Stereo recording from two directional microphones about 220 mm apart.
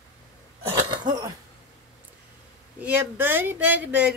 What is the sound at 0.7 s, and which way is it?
Cough, 20° right (ahead or behind).